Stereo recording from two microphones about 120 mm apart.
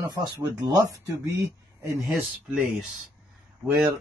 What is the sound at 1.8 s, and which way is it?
Speech, 25° right (ahead or behind).